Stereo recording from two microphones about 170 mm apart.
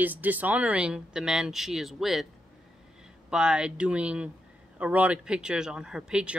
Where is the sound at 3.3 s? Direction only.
5° right (ahead or behind).